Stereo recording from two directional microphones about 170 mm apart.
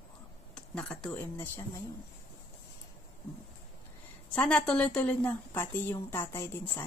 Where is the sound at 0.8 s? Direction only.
5° left (ahead or behind).